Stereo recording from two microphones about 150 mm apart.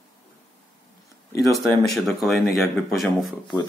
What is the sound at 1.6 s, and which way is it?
Speech, centre (ahead or behind).